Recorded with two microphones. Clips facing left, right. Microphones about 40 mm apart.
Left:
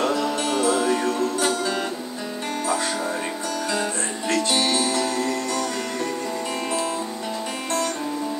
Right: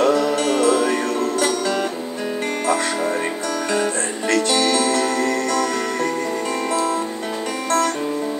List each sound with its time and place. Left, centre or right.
0.0 s music: right
3.7 s music: right